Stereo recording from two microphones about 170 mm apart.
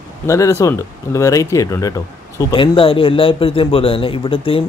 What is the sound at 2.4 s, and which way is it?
Speech, 30° left (ahead or behind).